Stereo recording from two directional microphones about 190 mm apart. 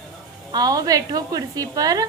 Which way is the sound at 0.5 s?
20° right (ahead or behind).